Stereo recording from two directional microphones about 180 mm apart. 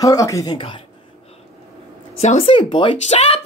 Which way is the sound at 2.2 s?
35° left (ahead or behind).